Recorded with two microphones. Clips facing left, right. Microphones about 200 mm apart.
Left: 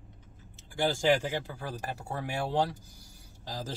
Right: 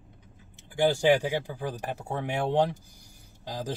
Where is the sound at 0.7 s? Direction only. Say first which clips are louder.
Right 4 dB; 15° right (ahead or behind).